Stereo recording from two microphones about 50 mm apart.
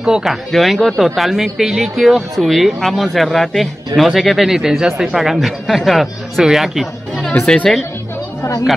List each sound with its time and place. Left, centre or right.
0.0 s speech: centre
0.5 s speech: centre
7.4 s speech: centre